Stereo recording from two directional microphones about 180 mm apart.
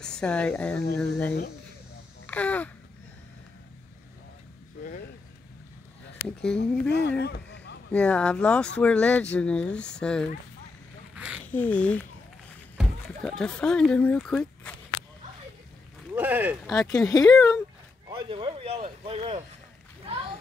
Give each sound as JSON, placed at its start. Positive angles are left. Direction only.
{"t": 0.0, "sound": "speech", "side_deg": 5}
{"t": 6.2, "sound": "speech", "side_deg": 5}
{"t": 6.6, "sound": "speech", "side_deg": 70}
{"t": 7.9, "sound": "speech", "side_deg": 5}
{"t": 11.1, "sound": "duck", "side_deg": -5}
{"t": 11.4, "sound": "speech", "side_deg": 10}
{"t": 16.2, "sound": "speech", "side_deg": -10}
{"t": 16.7, "sound": "speech", "side_deg": 20}
{"t": 18.1, "sound": "speech", "side_deg": -30}